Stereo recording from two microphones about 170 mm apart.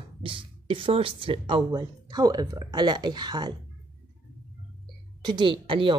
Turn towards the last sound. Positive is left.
turn(degrees=-30)  # may be behind; listen again after turning